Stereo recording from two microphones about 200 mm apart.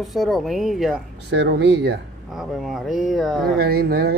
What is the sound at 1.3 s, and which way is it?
Speech, 60° right (ahead or behind).